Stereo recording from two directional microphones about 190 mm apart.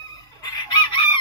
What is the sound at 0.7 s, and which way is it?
Chicken, 25° left (ahead or behind).